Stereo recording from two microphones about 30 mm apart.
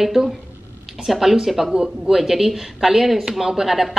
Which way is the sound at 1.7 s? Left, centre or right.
Right.